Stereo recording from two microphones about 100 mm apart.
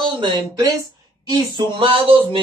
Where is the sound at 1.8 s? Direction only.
60° right (ahead or behind).